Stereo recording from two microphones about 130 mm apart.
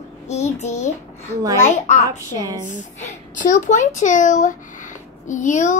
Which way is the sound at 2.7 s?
75° left (ahead or behind).